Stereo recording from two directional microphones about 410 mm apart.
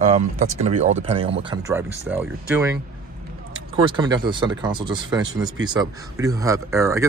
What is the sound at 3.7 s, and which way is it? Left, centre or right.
Speech, centre.